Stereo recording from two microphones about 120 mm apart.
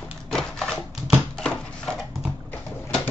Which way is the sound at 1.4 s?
5° left (ahead or behind).